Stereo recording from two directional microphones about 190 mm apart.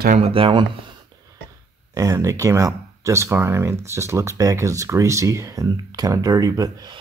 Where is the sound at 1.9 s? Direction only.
15° right (ahead or behind).